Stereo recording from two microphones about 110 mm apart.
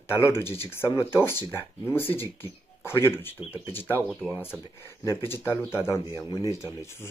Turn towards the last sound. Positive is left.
turn(degrees=25)  # may be behind; listen again after turning